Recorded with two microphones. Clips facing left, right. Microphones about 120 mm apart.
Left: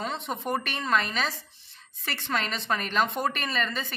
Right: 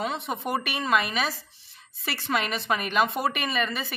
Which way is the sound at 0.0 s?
10° right (ahead or behind).